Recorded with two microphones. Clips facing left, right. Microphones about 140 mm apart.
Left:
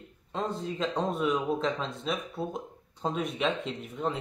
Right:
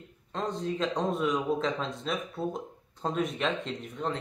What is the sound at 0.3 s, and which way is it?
Speech, 5° left (ahead or behind).